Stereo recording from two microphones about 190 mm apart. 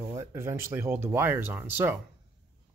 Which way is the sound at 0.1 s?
15° right (ahead or behind).